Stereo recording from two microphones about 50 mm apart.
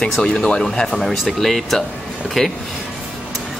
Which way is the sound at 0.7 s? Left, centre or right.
Centre.